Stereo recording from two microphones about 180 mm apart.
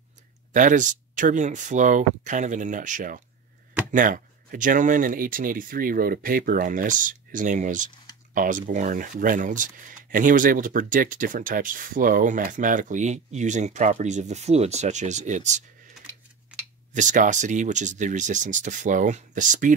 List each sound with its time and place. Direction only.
0.5 s speech: 45° right (ahead or behind)
16.9 s speech: 45° right (ahead or behind)